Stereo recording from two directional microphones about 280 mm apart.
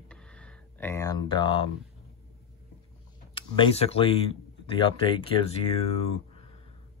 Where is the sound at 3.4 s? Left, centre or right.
Centre.